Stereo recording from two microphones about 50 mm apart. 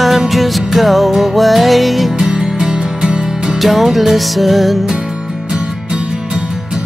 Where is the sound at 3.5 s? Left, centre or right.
Centre.